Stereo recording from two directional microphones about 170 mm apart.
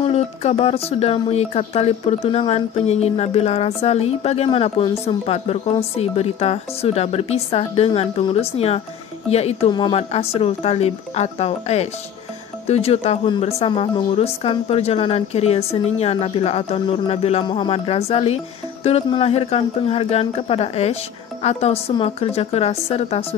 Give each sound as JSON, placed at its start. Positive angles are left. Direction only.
{"t": 0.0, "sound": "speech", "side_deg": 35}